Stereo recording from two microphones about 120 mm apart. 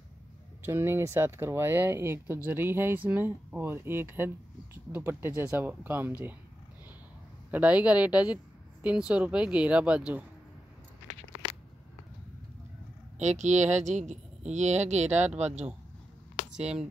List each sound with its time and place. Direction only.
0.7 s a woman's voice: 20° right (ahead or behind)
7.5 s a woman's voice: 10° right (ahead or behind)
13.2 s speech: 75° right (ahead or behind)
16.5 s speech: 5° right (ahead or behind)